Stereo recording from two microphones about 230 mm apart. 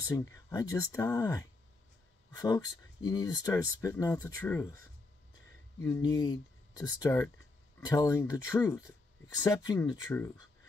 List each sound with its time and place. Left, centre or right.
0.1 s speech: centre
5.8 s speech: centre